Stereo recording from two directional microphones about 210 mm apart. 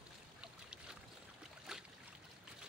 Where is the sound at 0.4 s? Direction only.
5° right (ahead or behind).